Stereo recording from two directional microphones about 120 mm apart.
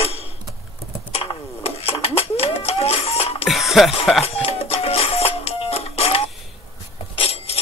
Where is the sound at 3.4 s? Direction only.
Centre (ahead or behind).